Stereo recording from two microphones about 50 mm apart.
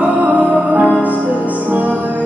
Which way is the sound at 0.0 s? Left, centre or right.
Right.